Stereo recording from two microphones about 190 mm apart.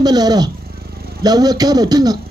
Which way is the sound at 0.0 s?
20° right (ahead or behind).